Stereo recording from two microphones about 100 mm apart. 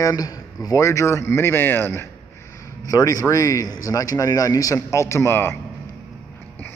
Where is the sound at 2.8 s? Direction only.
35° left (ahead or behind).